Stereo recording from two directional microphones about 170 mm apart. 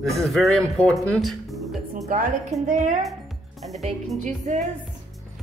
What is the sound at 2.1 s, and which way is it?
Speech, 55° right (ahead or behind).